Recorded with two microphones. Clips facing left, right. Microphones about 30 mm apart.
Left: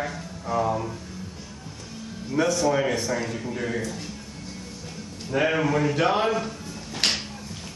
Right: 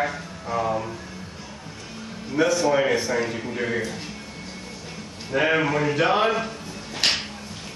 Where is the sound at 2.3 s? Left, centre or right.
Centre.